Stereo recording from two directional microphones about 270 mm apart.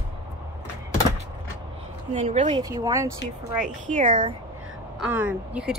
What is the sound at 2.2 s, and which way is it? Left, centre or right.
Speech, right.